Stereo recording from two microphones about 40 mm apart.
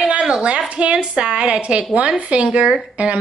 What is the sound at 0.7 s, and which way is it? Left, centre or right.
Speech, right.